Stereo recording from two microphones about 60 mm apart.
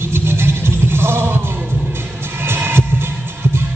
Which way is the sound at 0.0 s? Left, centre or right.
Right.